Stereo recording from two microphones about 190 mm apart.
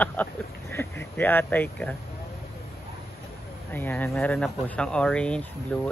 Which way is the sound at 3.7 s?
10° left (ahead or behind).